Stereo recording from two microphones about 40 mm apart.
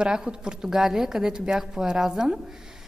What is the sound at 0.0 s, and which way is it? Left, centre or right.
A woman's voice, right.